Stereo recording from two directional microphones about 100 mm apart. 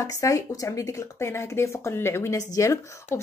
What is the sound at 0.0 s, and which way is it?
Speech, 35° left (ahead or behind).